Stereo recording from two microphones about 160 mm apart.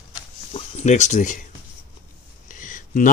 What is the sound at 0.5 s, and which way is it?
Speech, 45° left (ahead or behind).